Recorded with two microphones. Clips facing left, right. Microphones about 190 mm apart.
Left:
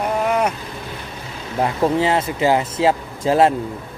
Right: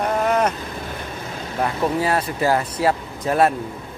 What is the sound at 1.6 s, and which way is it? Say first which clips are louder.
Speech: left 3 dB; 20° left (ahead or behind).